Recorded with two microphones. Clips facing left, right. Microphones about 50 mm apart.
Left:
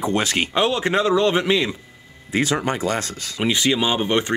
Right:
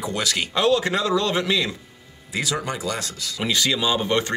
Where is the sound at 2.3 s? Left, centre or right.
Left.